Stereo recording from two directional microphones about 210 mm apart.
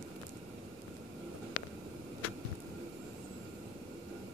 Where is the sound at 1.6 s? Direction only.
65° left (ahead or behind).